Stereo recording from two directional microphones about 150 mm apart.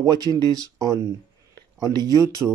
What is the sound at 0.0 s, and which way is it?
Speech, 25° right (ahead or behind).